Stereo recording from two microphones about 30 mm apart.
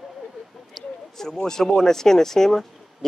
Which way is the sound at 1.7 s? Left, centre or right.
Centre.